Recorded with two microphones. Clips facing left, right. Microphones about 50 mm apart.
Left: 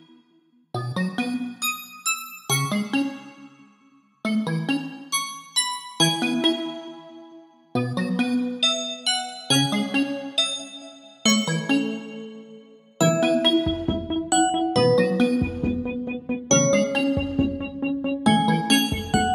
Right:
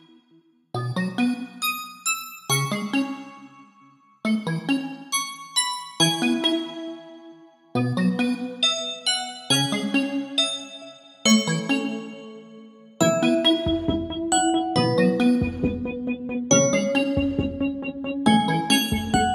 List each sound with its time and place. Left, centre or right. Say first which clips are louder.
0.7 s music: even; centre
4.2 s music: even; centre
7.7 s music: right 1 dB; centre
10.0 s music: right 2 dB; centre
11.2 s music: right 1 dB; centre
13.0 s music: even; centre